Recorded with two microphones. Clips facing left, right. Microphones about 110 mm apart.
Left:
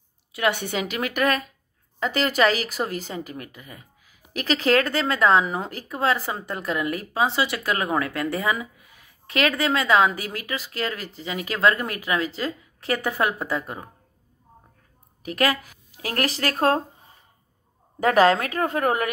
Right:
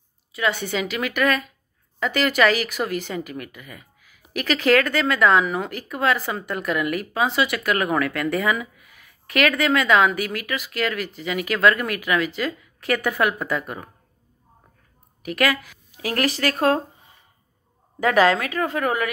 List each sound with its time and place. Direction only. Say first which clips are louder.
0.4 s a woman's voice: even; 60° left (ahead or behind)
0.7 s a woman's voice: right 1 dB; 45° left (ahead or behind); by 13.8 s 20° left (ahead or behind)
15.2 s a woman's voice: right 1 dB; 35° left (ahead or behind)
18.0 s a woman's voice: even; 40° left (ahead or behind)